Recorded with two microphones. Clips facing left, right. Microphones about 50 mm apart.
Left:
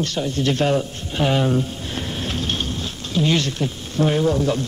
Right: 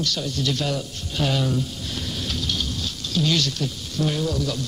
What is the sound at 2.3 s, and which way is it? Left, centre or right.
Vehicle, left.